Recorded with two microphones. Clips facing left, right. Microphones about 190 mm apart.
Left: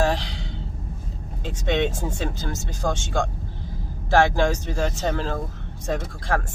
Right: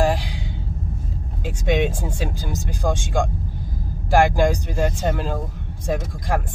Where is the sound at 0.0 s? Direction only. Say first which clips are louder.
Right 2 dB; 10° right (ahead or behind).